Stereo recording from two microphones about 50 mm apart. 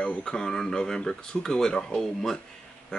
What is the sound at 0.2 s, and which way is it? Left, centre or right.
Speech, centre.